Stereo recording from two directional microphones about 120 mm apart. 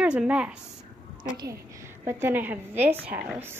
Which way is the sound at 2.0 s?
15° right (ahead or behind).